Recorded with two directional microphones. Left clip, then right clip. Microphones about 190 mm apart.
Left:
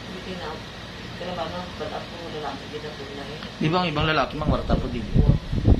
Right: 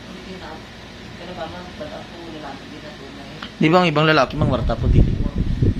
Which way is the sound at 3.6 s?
60° right (ahead or behind).